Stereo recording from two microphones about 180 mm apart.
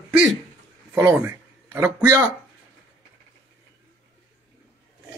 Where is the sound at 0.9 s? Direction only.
10° right (ahead or behind).